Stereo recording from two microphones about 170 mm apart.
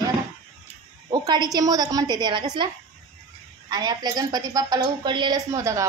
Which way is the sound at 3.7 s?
25° right (ahead or behind).